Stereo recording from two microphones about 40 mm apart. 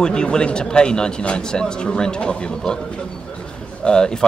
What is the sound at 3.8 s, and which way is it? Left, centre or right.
Speech, centre.